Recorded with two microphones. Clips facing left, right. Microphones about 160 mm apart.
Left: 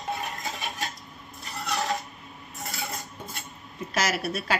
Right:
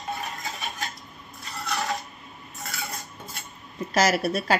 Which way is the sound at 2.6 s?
20° left (ahead or behind).